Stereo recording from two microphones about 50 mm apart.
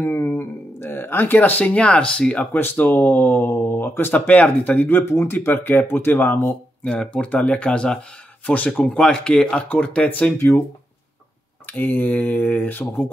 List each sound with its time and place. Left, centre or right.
0.0 s a sound: left
0.4 s speech: left
2.5 s speech: left
4.1 s speech: left
4.8 s speech: left
6.8 s speech: left
8.8 s speech: centre
9.7 s speech: left
10.3 s speech: left
11.6 s speech: left